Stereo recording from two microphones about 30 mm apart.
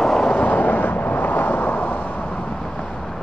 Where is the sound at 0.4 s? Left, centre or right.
Left.